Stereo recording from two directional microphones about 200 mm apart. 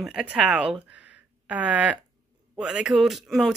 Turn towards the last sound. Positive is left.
turn(degrees=0)  # may be behind; listen again after turning